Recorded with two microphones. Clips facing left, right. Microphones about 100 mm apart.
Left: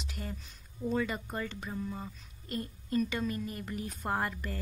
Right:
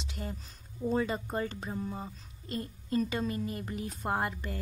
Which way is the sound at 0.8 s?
30° right (ahead or behind).